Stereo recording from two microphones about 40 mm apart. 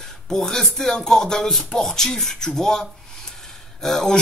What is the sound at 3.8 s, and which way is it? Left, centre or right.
Music, centre.